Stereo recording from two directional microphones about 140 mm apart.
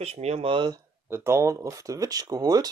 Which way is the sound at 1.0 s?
20° right (ahead or behind).